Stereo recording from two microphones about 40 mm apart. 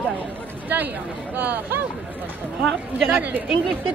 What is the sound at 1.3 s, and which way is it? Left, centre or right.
Speech, right.